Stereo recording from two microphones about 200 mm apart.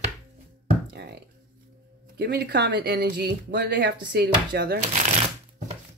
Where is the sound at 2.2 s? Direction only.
50° right (ahead or behind).